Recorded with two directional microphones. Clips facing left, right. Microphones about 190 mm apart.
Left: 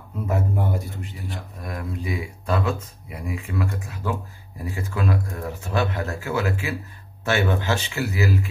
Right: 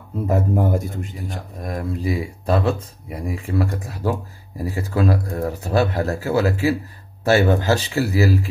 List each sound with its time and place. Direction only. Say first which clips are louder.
0.3 s a man's voice: right 6 dB; 45° right (ahead or behind)